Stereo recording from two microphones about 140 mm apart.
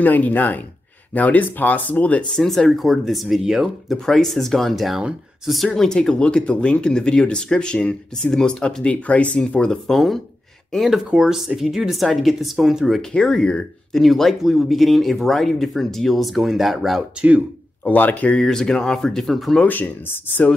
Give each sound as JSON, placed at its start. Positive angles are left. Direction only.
{"t": 0.0, "sound": "speech", "side_deg": 10}
{"t": 17.8, "sound": "speech", "side_deg": 10}